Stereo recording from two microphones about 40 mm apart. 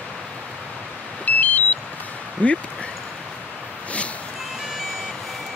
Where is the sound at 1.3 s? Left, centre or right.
Left.